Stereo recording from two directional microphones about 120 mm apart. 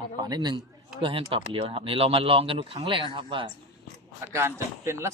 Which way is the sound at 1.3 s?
50° right (ahead or behind).